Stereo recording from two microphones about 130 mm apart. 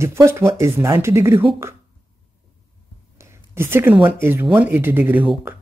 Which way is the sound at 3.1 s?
20° right (ahead or behind).